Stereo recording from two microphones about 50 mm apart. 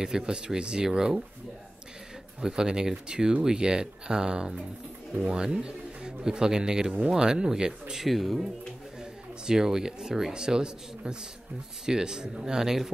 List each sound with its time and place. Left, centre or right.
0.0 s speech: centre
2.4 s speech: centre
8.0 s speech: centre
9.5 s speech: centre